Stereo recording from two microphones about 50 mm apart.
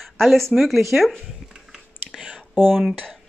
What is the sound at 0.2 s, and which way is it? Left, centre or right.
Speech, centre.